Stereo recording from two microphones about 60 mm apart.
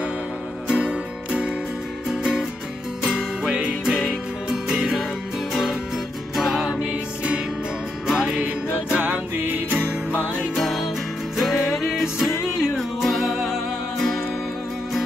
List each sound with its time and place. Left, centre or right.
0.7 s music: centre
2.0 s music: centre
8.9 s music: right
10.5 s music: centre
13.9 s music: centre